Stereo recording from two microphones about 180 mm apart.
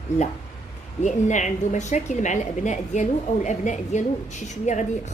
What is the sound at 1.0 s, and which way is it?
A woman's voice, 40° left (ahead or behind).